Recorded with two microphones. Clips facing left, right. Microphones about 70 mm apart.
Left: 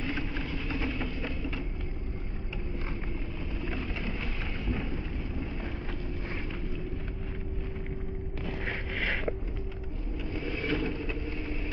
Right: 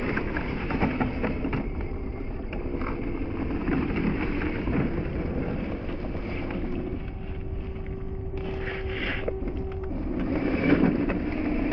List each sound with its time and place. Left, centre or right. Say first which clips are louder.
0.0 s a sound: right 6 dB; right
2.5 s vehicle: right 8 dB; right
10.1 s vehicle: right 9 dB; right